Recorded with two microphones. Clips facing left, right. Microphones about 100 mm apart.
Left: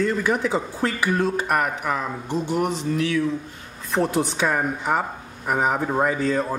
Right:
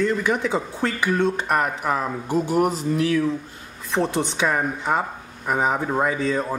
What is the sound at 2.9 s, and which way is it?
Speech, 40° right (ahead or behind).